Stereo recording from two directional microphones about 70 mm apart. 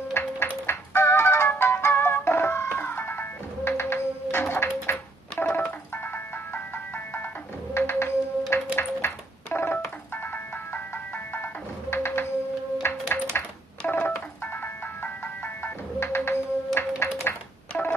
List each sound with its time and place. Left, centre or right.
0.2 s music: left
4.9 s ice cream truck: centre
7.7 s music: left
8.7 s telephone: left
10.2 s music: left
13.4 s telephone: left
13.8 s telephone dialing: left
14.4 s music: left
17.0 s a sound: left